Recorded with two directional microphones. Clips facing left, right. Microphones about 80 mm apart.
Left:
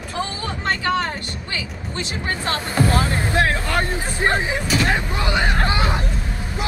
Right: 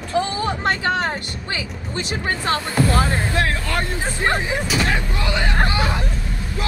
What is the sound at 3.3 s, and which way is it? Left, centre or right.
Speech, left.